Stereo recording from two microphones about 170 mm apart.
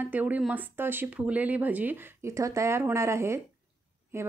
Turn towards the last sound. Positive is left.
turn(degrees=-15)  # may be behind; listen again after turning